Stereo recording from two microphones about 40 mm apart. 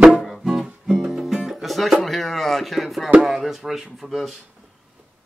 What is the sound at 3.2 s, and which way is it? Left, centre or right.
Speech, centre.